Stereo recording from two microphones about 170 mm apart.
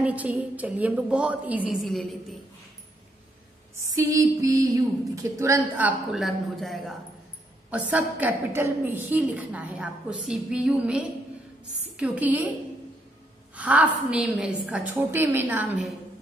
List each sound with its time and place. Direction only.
0.0 s a woman's voice: 5° right (ahead or behind)
3.9 s a woman's voice: 20° right (ahead or behind)
13.6 s a woman's voice: 10° right (ahead or behind)